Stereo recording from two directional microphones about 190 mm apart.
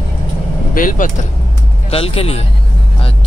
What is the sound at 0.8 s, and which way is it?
Vehicle, 45° left (ahead or behind).